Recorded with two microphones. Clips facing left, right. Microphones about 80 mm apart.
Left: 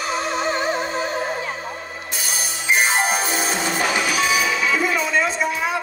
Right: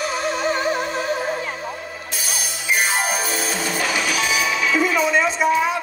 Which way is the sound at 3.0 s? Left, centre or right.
Left.